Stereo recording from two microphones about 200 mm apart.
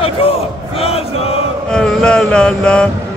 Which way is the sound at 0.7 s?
30° left (ahead or behind).